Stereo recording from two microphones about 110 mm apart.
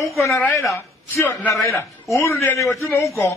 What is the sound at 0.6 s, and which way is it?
Speech, 30° left (ahead or behind).